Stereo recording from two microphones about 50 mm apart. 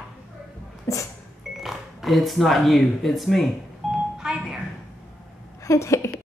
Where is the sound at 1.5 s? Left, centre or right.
Centre.